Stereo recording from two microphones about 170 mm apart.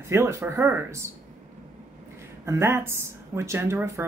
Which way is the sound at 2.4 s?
15° right (ahead or behind).